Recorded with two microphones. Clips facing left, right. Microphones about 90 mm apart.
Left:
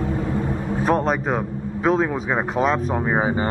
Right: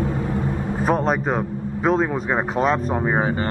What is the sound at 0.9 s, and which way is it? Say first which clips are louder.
Speech: even; centre (ahead or behind).